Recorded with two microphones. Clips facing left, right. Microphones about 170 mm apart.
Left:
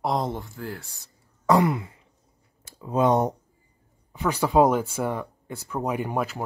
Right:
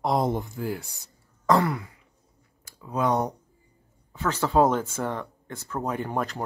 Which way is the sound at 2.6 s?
25° left (ahead or behind).